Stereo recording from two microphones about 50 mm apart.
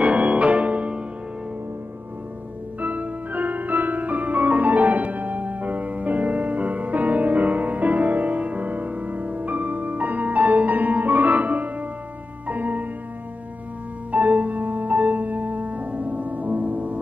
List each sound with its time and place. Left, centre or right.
0.0 s music: right
2.8 s music: right
14.1 s music: right